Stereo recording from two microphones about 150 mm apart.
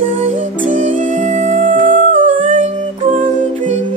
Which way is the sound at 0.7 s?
55° right (ahead or behind).